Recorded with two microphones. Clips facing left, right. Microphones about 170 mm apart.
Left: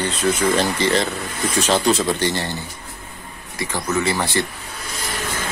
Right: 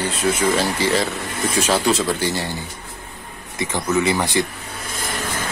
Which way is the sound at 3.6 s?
20° right (ahead or behind).